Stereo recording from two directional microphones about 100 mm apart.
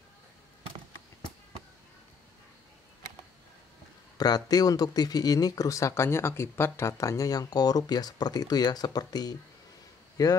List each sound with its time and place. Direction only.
4.2 s speech: 40° left (ahead or behind)